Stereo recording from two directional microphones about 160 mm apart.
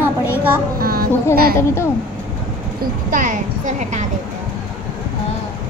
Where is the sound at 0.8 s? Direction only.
70° right (ahead or behind).